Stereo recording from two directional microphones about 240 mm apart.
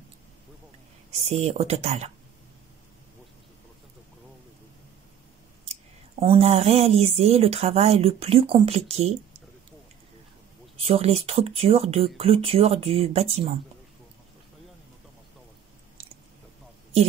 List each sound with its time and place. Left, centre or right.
1.3 s speech: right
5.7 s speech: right
10.9 s speech: right